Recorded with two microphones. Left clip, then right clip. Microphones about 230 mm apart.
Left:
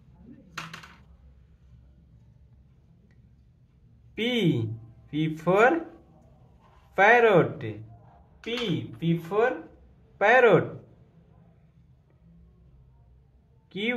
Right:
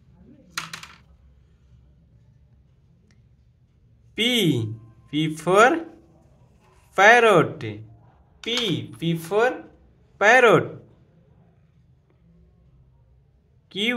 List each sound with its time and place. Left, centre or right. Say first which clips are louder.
4.1 s speech: right 5 dB; right
6.9 s speech: right 4 dB; right
13.7 s a sound: right 5 dB; right